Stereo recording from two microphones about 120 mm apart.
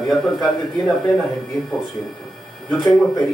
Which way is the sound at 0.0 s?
Centre (ahead or behind).